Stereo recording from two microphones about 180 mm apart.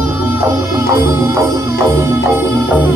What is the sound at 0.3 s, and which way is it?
Music, 15° right (ahead or behind).